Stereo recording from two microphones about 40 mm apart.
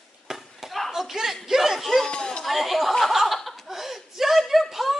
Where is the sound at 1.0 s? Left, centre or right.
Centre.